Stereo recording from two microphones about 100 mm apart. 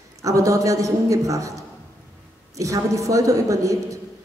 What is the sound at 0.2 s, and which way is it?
A woman's voice, 35° right (ahead or behind).